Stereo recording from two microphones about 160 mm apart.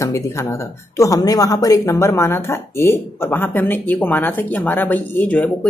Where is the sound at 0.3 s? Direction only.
20° left (ahead or behind).